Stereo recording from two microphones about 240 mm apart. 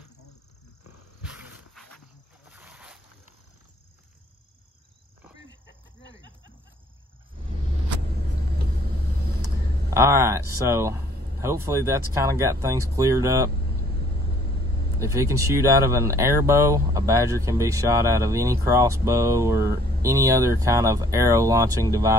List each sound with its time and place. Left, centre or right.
1.4 s dog: centre
2.5 s boat: centre
9.8 s speech: centre
15.0 s speech: centre
19.6 s speech: right
20.0 s speech: centre